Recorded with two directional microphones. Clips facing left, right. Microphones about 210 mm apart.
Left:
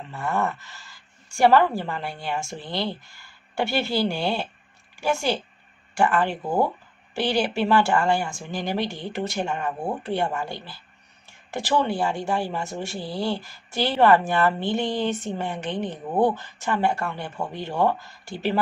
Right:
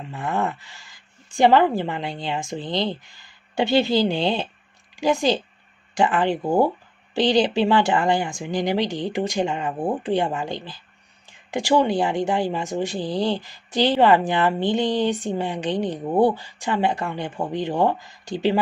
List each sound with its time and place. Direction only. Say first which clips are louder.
0.1 s speech: right 1 dB; 15° right (ahead or behind)